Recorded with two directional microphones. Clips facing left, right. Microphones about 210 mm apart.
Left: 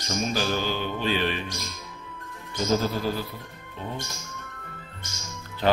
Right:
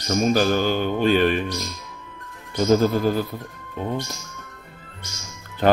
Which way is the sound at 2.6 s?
50° right (ahead or behind).